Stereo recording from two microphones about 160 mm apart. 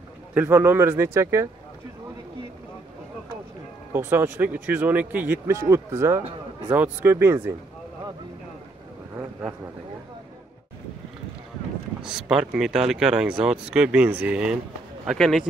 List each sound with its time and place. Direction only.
0.3 s speech: 15° right (ahead or behind)
3.9 s speech: 15° right (ahead or behind)
9.1 s a sound: 10° right (ahead or behind)
12.0 s speech: 5° right (ahead or behind)